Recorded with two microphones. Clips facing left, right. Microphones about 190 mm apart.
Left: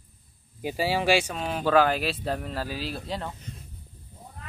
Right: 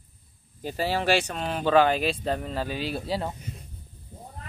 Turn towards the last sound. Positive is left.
turn(degrees=0)  # may be behind; listen again after turning